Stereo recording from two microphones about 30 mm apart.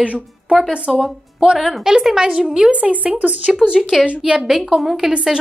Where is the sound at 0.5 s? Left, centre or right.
Centre.